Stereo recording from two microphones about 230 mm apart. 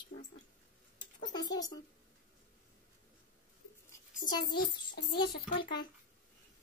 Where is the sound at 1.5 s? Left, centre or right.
Centre.